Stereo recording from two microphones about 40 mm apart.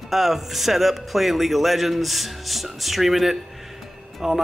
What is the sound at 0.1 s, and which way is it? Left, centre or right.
Speech, centre.